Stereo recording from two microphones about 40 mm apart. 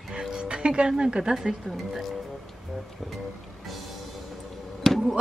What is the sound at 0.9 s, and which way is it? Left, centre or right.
Speech, centre.